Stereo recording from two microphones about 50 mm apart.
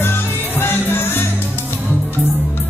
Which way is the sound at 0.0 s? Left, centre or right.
Left.